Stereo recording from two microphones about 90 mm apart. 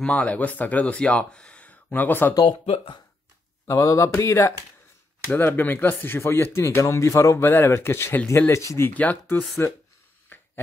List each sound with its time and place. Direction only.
0.0 s speech: 15° left (ahead or behind)
2.4 s speech: 80° left
3.6 s speech: 35° left (ahead or behind)
5.3 s speech: 20° left (ahead or behind)
10.3 s a sound: 25° left (ahead or behind)